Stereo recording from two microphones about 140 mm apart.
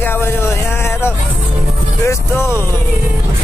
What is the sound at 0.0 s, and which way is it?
Vehicle, 15° left (ahead or behind).